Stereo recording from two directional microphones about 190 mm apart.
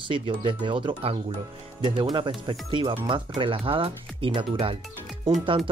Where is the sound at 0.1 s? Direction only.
25° right (ahead or behind).